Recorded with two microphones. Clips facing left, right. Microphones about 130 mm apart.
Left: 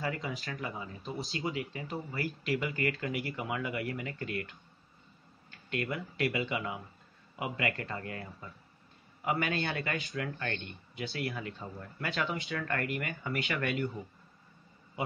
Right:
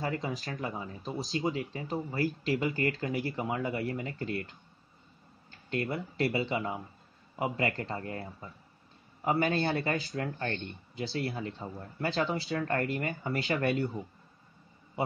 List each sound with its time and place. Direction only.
0.0 s speech: 35° right (ahead or behind)